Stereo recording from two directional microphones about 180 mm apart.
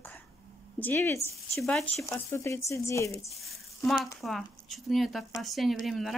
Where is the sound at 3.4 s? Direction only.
Centre (ahead or behind).